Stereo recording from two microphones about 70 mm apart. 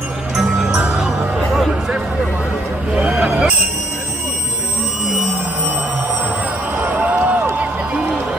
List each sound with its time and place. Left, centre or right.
0.7 s music: centre
2.9 s vehicle: centre
6.8 s a sound: right